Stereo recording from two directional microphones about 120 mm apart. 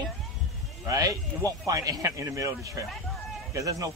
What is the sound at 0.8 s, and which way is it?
Speech, 30° right (ahead or behind).